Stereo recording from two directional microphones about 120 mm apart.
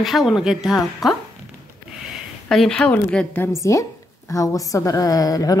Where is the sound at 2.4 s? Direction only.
5° left (ahead or behind).